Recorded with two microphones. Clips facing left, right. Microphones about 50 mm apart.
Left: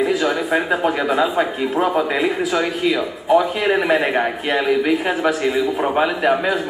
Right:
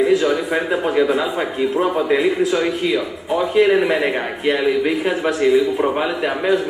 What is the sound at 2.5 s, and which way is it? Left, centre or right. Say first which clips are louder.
Speech: even; centre.